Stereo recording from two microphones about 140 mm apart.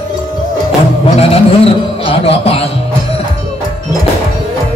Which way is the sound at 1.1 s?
45° left (ahead or behind).